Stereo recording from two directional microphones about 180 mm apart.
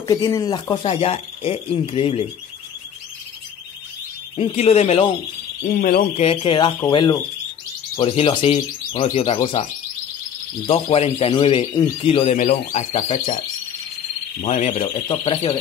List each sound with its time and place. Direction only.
0.0 s speech: 20° left (ahead or behind)
0.8 s speech: 35° left (ahead or behind)
4.4 s speech: 35° left (ahead or behind)
5.8 s speech: 55° left (ahead or behind)
6.1 s speech: 30° left (ahead or behind)
10.7 s speech: 30° left (ahead or behind)
12.4 s speech: 45° left (ahead or behind)
14.4 s speech: 40° left (ahead or behind)
15.0 s speech: 25° left (ahead or behind)